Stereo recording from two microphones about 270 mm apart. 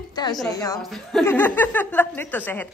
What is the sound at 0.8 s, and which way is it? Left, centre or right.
A woman's voice, centre.